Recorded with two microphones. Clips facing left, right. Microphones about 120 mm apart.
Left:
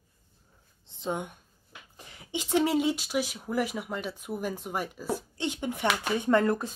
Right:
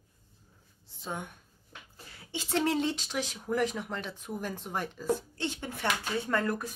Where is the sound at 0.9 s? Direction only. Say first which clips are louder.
Left 6 dB; 20° left (ahead or behind).